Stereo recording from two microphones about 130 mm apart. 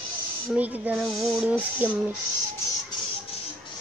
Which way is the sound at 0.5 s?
10° right (ahead or behind).